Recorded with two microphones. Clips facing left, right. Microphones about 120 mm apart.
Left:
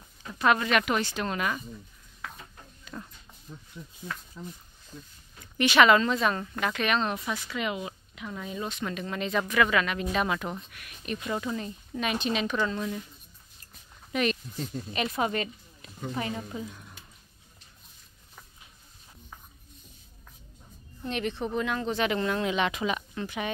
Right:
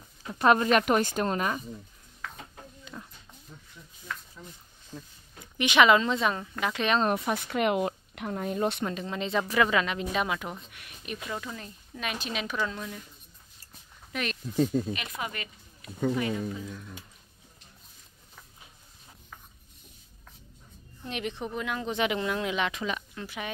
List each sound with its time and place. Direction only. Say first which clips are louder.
0.3 s speech: right 2 dB; 35° right (ahead or behind)
2.9 s speech: left 3 dB; centre (ahead or behind)
5.6 s a woman's voice: left 1 dB; 15° right (ahead or behind)
7.0 s speech: right 4 dB; 50° right (ahead or behind)
8.8 s speech: even; 25° right (ahead or behind)
10.2 s speech: left 2 dB; 5° right (ahead or behind)
11.2 s speech: left 7 dB; 5° left (ahead or behind)
14.1 s speech: left 6 dB; centre (ahead or behind)
14.9 s a woman's voice: left 6 dB; 35° left (ahead or behind)
21.1 s a woman's voice: left 3 dB; 15° right (ahead or behind)